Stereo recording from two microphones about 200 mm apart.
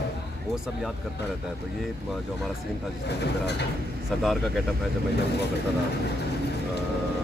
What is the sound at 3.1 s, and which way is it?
Speech, 55° left (ahead or behind).